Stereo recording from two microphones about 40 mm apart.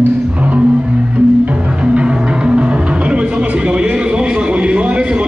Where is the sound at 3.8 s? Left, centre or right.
Right.